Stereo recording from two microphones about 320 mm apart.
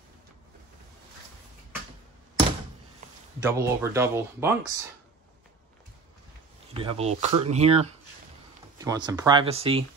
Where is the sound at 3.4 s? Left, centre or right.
Centre.